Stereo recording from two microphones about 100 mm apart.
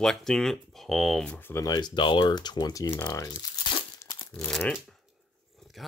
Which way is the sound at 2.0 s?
55° left (ahead or behind).